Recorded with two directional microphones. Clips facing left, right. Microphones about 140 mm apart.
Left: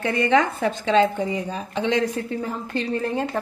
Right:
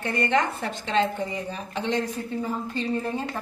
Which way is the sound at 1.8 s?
90° left.